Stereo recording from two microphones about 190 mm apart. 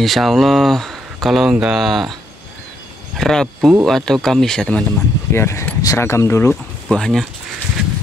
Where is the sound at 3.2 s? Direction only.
Centre (ahead or behind).